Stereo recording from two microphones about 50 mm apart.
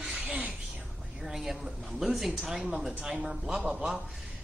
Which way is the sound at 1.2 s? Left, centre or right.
Centre.